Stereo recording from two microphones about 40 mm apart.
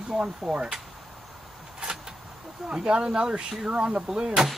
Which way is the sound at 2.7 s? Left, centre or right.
Centre.